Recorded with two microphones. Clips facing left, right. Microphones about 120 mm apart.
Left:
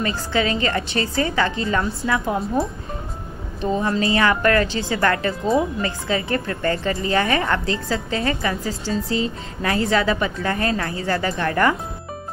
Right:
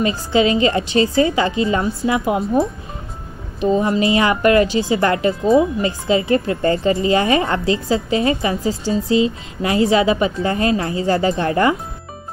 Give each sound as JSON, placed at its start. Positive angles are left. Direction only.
{"t": 0.0, "sound": "a woman's voice", "side_deg": -20}
{"t": 3.7, "sound": "a woman's voice", "side_deg": -20}